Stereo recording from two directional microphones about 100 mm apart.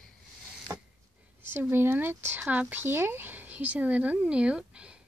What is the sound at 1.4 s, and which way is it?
A woman's voice, 20° right (ahead or behind).